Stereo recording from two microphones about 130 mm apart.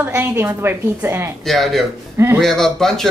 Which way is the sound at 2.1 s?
20° right (ahead or behind).